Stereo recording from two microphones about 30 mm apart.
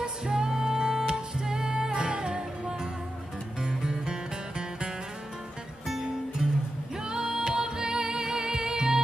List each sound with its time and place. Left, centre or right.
0.0 s music: right
6.4 s music: right